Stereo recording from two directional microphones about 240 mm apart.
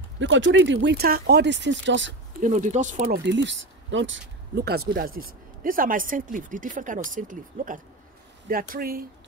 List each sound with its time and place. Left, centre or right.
0.2 s speech: right
2.4 s speech: right
3.3 s speech: right